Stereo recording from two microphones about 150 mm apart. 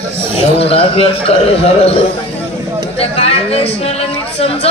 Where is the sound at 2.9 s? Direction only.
40° left (ahead or behind).